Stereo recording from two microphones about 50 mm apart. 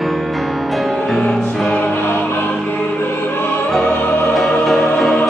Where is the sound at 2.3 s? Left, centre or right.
Left.